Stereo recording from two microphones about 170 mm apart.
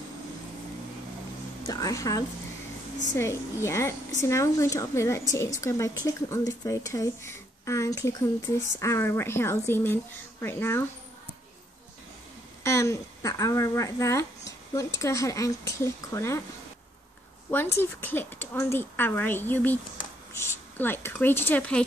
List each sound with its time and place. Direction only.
1.7 s a woman's voice: 20° left (ahead or behind)
12.6 s a woman's voice: 15° left (ahead or behind)
17.5 s a woman's voice: 10° left (ahead or behind)